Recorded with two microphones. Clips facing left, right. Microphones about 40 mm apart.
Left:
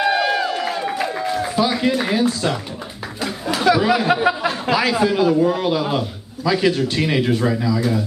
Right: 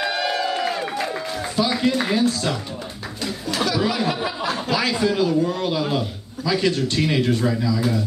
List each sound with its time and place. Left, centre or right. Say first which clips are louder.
0.0 s a sound: left 5 dB; centre
3.6 s speech: left 6 dB; centre
4.1 s a man's voice: left 8 dB; left
4.5 s a man's voice: left 4 dB; centre